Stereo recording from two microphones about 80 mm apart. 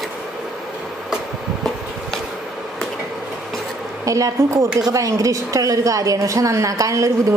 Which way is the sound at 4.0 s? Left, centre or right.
Right.